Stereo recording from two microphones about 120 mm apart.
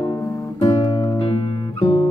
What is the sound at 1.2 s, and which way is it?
Music, 50° left (ahead or behind).